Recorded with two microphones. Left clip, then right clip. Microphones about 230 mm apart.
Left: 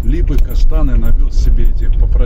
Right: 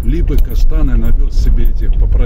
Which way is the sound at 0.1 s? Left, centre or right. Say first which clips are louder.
Right 2 dB; right.